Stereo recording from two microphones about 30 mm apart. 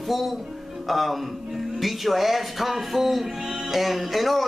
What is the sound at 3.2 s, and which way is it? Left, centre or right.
Speech, centre.